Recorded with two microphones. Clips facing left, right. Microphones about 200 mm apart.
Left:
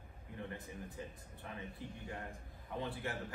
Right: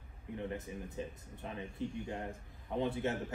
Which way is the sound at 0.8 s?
20° right (ahead or behind).